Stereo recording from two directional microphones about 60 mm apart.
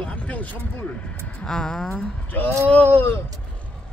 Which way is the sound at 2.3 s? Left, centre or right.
Left.